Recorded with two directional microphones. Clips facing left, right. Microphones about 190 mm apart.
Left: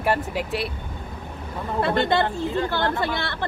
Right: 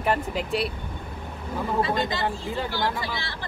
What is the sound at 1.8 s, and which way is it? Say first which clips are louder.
Speech: left 8 dB; 60° left (ahead or behind).